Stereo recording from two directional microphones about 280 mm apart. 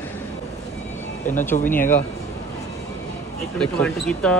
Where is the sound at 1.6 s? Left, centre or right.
Centre.